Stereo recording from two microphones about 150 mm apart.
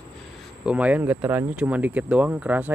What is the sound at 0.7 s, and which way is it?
Speech, 10° right (ahead or behind).